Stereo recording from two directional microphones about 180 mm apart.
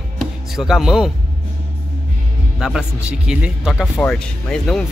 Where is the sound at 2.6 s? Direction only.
5° right (ahead or behind).